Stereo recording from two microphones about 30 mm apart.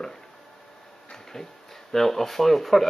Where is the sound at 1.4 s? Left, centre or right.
Centre.